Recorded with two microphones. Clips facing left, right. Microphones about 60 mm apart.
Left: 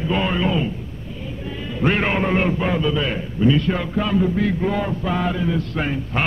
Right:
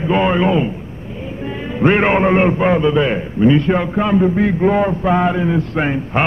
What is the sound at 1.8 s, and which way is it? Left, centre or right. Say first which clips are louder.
A man's voice: right 7 dB; right.